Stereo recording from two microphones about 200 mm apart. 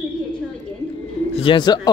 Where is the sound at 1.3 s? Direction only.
25° left (ahead or behind).